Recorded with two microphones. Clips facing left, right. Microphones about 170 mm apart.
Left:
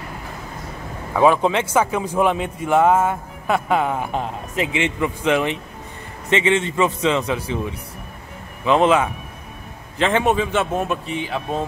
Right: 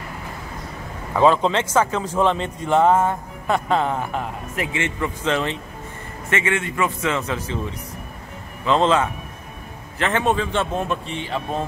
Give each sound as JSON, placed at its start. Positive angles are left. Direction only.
{"t": 1.1, "sound": "a man's voice", "side_deg": 10}
{"t": 4.1, "sound": "a man's voice", "side_deg": 20}